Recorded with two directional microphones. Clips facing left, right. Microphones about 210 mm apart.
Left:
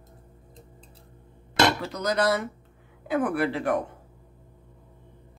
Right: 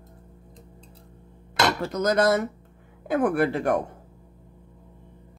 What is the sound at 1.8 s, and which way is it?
Dishes, 45° right (ahead or behind).